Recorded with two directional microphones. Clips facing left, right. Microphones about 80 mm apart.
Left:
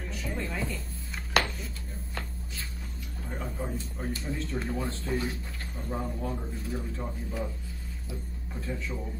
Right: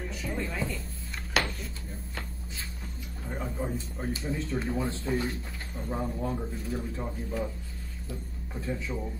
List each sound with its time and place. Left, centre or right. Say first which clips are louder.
0.1 s a sound: left 2 dB; centre
3.3 s speech: right 2 dB; centre
5.1 s speech: right 1 dB; centre
5.9 s speech: right 2 dB; centre
8.5 s speech: right 2 dB; centre